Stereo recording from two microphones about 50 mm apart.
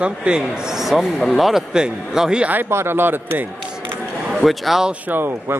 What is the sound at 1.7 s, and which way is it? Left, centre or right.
Speech, centre.